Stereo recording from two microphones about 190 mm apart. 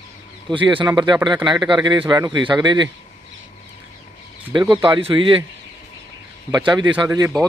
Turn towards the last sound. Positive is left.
turn(degrees=-10)  # may be behind; listen again after turning